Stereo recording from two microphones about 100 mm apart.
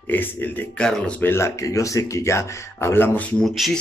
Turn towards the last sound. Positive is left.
turn(degrees=0)  # may be behind; listen again after turning